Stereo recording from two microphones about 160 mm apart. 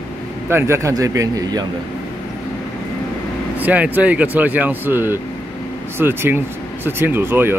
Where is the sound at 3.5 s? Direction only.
10° right (ahead or behind).